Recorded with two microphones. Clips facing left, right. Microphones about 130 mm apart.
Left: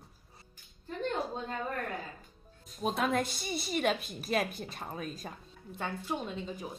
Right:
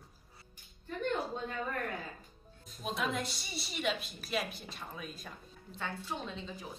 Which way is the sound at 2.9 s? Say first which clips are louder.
Left 5 dB; 50° left (ahead or behind).